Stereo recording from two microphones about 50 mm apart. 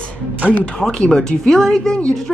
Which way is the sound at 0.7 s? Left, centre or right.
Centre.